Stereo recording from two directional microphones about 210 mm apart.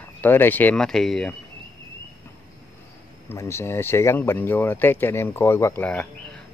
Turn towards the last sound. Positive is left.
turn(degrees=10)  # may be behind; listen again after turning